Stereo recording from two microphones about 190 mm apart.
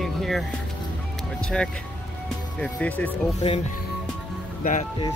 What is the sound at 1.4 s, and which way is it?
Speech, 5° left (ahead or behind).